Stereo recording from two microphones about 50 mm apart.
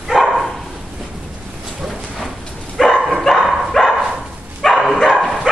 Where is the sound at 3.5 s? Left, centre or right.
Centre.